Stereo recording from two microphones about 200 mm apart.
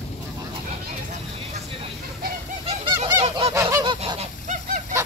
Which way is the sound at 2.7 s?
30° right (ahead or behind).